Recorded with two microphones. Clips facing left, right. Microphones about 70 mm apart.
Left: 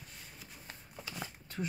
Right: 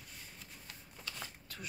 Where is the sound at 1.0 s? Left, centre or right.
Centre.